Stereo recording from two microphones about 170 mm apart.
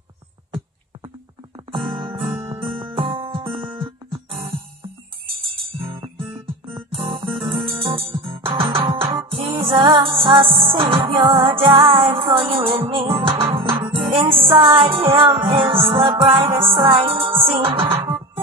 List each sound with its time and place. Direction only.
2.8 s music: 30° right (ahead or behind)
6.1 s music: 30° right (ahead or behind)